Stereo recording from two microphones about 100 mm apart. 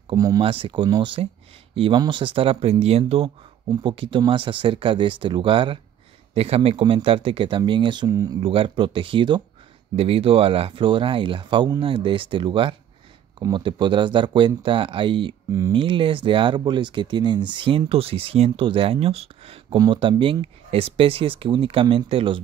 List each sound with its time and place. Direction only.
0.1 s speech: 40° right (ahead or behind)
0.4 s speech: 60° right (ahead or behind)
3.8 s speech: 60° right (ahead or behind)
6.3 s speech: 90° right; by 8.1 s 50° right (ahead or behind)
8.1 s speech: 35° right (ahead or behind)
8.4 s speech: 65° right (ahead or behind)
9.9 s speech: 70° right (ahead or behind)
19.9 s speech: 60° right (ahead or behind)